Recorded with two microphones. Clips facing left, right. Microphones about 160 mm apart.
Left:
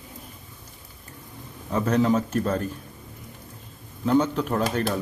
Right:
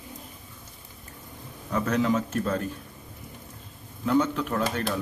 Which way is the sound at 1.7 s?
30° left (ahead or behind).